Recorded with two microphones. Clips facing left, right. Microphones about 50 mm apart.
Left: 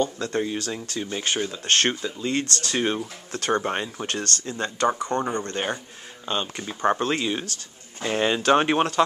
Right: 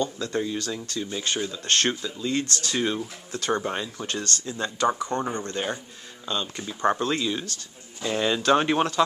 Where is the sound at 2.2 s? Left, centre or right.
Left.